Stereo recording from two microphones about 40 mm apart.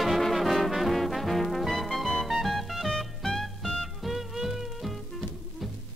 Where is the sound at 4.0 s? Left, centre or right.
Centre.